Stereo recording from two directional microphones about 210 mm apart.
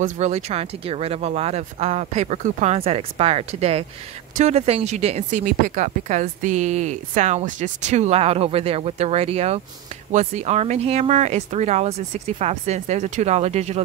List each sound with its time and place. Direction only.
0.0 s a woman's voice: 30° right (ahead or behind)